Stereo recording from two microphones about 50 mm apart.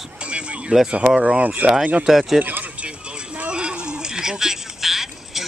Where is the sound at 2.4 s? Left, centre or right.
Right.